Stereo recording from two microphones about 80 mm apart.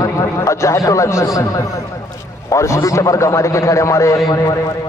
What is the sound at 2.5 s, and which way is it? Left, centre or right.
A man's voice, left.